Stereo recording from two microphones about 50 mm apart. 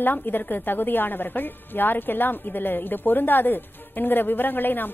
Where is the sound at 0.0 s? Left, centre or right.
Left.